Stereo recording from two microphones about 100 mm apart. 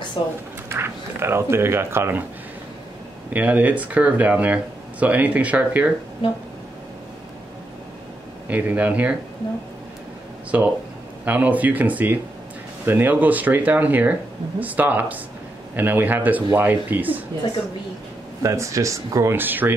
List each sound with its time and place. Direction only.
0.2 s speech: 50° left (ahead or behind)
0.7 s speech: 25° right (ahead or behind)
3.3 s speech: 15° right (ahead or behind)
8.5 s speech: 15° right (ahead or behind)
10.5 s speech: 15° right (ahead or behind)
18.4 s speech: 30° right (ahead or behind)